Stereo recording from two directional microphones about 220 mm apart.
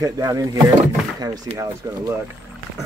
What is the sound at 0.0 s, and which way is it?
Speech, 15° right (ahead or behind).